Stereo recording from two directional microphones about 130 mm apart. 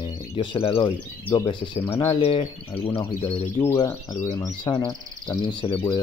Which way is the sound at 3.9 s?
25° left (ahead or behind).